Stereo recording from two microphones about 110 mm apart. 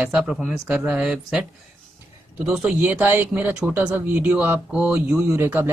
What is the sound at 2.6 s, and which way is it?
A man's voice, 10° right (ahead or behind).